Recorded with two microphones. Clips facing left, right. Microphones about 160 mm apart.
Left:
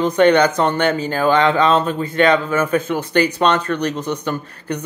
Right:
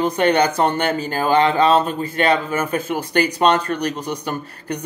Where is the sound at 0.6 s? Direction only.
40° right (ahead or behind).